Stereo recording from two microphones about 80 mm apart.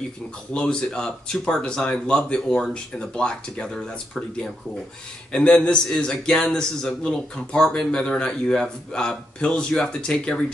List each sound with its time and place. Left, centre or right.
0.5 s a man's voice: centre